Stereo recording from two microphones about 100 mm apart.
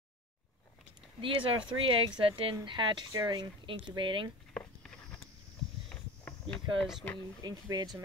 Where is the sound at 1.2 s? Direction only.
60° right (ahead or behind).